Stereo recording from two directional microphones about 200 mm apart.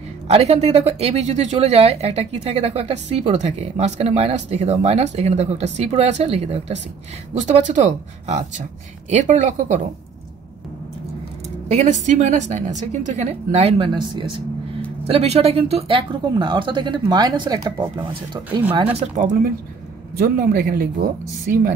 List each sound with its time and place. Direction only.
0.3 s speech: 35° right (ahead or behind)
11.7 s speech: 40° right (ahead or behind)